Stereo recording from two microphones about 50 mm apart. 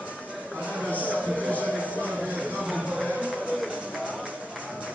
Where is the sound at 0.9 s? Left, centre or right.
Right.